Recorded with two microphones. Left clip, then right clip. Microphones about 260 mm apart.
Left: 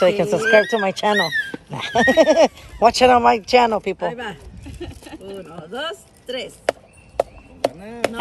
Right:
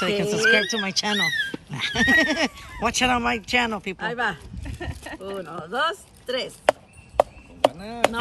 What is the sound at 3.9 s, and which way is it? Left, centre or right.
Speech, centre.